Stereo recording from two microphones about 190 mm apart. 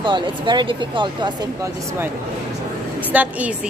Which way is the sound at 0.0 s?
25° right (ahead or behind).